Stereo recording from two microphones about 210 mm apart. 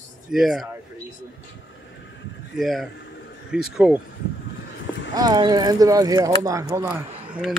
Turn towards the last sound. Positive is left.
turn(degrees=-5)  # may be behind; listen again after turning